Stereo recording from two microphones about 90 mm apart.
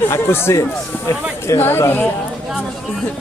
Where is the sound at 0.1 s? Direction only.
30° left (ahead or behind).